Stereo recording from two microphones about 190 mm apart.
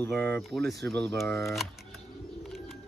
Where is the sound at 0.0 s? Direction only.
10° left (ahead or behind).